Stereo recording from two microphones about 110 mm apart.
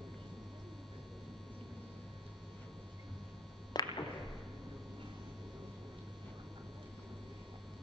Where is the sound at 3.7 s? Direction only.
40° left (ahead or behind).